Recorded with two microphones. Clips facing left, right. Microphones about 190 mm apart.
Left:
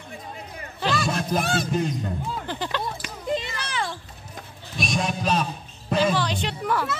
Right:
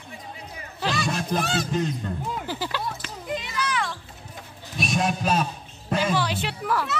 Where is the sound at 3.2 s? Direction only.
30° left (ahead or behind).